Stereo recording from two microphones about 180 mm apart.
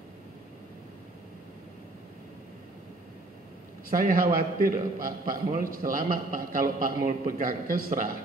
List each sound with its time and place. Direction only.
3.9 s a man's voice: 50° right (ahead or behind)